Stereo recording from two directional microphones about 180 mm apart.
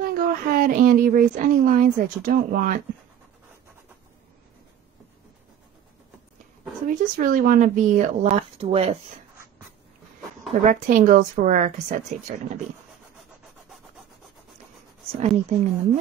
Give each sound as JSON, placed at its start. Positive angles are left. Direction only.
{"t": 0.0, "sound": "speech", "side_deg": -55}
{"t": 6.9, "sound": "speech", "side_deg": -50}
{"t": 10.6, "sound": "speech", "side_deg": -50}
{"t": 15.1, "sound": "speech", "side_deg": -45}